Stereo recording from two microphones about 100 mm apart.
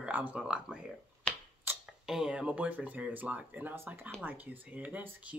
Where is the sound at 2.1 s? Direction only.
5° right (ahead or behind).